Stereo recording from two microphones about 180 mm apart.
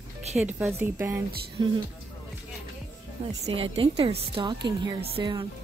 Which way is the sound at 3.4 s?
35° right (ahead or behind).